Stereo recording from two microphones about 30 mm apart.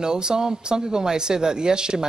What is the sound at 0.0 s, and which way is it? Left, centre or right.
Speech, right.